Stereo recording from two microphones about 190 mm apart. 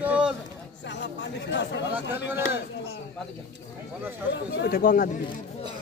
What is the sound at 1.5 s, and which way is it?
Speech, 65° left (ahead or behind).